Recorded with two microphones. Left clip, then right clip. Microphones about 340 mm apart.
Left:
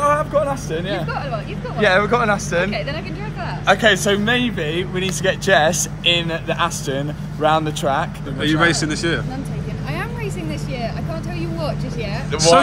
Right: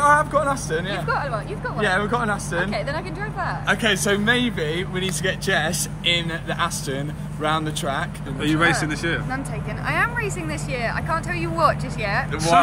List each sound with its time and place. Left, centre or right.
0.0 s vehicle: centre
1.8 s speech: left
3.6 s speech: centre
12.1 s speech: centre